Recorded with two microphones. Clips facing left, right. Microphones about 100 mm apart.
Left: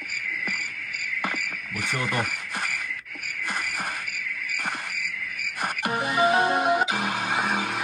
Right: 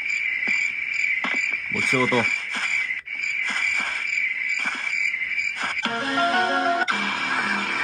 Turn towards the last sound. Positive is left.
turn(degrees=10)  # may be behind; listen again after turning